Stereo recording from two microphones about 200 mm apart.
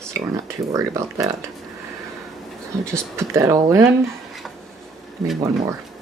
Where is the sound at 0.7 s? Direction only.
15° right (ahead or behind).